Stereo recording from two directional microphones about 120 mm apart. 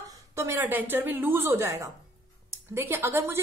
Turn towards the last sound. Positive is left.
turn(degrees=-20)  # may be behind; listen again after turning